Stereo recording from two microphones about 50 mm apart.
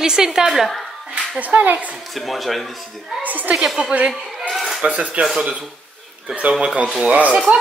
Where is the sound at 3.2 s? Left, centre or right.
Right.